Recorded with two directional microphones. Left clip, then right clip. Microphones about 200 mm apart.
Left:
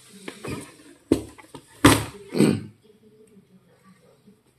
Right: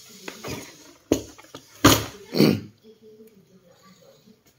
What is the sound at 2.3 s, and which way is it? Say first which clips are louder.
Burping: right 1 dB; 10° right (ahead or behind).